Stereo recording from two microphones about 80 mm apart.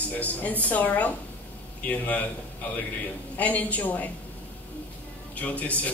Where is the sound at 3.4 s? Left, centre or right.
Centre.